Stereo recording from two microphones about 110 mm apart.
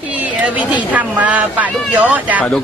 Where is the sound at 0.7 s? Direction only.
15° right (ahead or behind).